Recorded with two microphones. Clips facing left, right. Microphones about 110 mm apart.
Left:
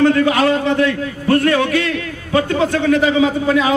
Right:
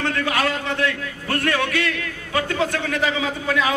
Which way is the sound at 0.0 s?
30° left (ahead or behind).